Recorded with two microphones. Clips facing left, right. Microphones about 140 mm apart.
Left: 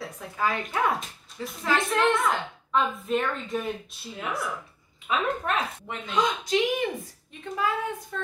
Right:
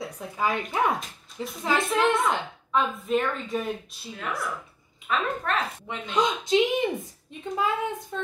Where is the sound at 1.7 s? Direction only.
Centre (ahead or behind).